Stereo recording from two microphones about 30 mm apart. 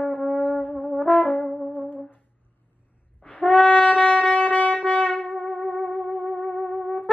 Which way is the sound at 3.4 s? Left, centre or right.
Left.